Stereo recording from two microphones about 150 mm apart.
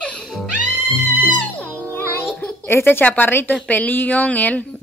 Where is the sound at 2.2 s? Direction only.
5° left (ahead or behind).